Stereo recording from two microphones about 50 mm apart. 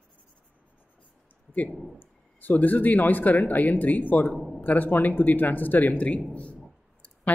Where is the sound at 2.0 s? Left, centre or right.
Left.